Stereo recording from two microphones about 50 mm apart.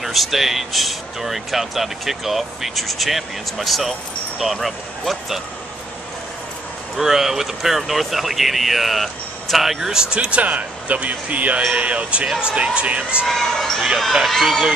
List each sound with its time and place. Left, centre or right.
0.0 s speech: centre
7.0 s speech: centre
10.1 s speech: right
13.3 s speech: centre